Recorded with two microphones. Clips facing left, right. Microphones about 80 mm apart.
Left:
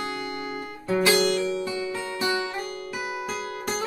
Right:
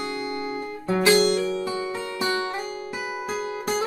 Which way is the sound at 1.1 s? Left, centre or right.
Right.